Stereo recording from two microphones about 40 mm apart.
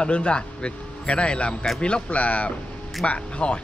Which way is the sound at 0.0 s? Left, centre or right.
Left.